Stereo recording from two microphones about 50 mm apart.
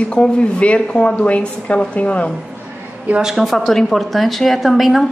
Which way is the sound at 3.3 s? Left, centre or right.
Centre.